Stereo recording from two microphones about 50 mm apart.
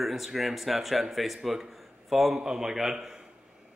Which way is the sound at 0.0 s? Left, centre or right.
Centre.